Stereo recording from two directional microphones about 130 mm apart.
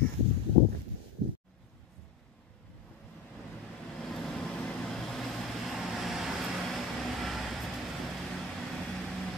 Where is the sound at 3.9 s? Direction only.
5° left (ahead or behind).